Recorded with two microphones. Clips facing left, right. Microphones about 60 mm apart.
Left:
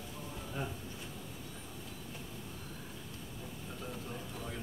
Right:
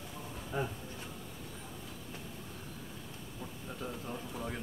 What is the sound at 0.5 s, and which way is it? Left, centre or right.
Insect, right.